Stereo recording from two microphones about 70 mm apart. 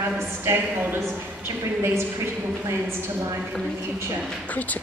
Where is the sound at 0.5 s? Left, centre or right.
Right.